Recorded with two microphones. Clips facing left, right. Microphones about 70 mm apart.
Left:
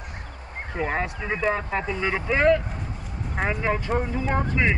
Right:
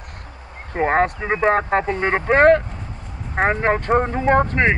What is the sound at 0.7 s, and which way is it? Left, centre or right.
Speech, right.